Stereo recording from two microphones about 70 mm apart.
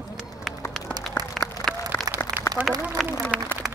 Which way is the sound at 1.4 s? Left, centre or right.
Centre.